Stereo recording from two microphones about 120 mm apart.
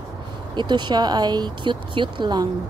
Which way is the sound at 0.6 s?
40° right (ahead or behind).